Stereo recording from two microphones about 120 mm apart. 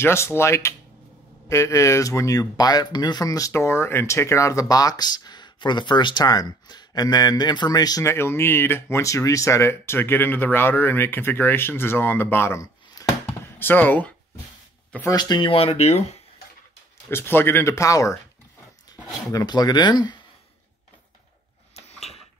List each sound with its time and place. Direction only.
0.0 s speech: 20° left (ahead or behind)
15.0 s speech: 35° left (ahead or behind); by 16.2 s 65° left (ahead or behind)
17.1 s speech: 20° left (ahead or behind)
19.3 s speech: 35° left (ahead or behind)
21.7 s a sound: 60° left (ahead or behind)